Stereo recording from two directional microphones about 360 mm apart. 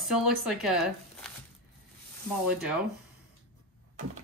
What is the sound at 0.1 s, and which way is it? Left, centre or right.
Speech, centre.